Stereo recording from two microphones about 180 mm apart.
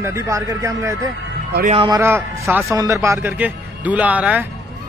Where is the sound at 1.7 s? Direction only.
30° right (ahead or behind).